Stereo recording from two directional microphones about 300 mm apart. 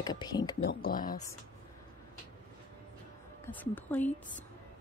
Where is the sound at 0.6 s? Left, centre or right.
Left.